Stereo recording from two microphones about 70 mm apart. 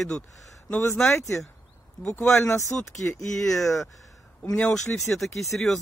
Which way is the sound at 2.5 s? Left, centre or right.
Left.